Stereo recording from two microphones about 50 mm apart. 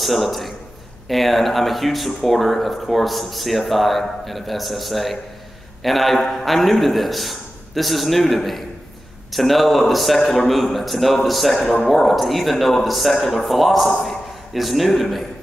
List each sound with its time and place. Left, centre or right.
0.0 s a man's voice: centre